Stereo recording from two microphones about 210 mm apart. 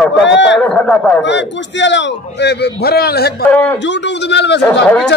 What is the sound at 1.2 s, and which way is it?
A man's voice, 55° left (ahead or behind).